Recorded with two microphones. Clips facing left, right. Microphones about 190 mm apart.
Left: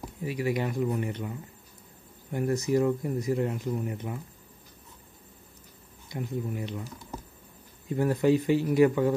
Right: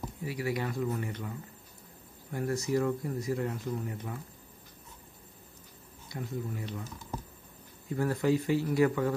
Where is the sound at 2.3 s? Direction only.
20° left (ahead or behind).